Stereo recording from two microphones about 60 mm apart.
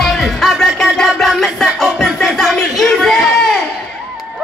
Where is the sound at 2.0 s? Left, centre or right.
Centre.